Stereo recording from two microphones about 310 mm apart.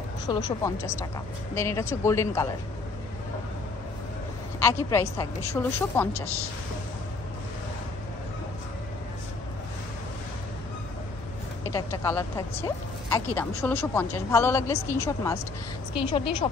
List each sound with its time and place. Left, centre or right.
0.3 s a woman's voice: centre
4.6 s a woman's voice: centre
11.7 s a woman's voice: centre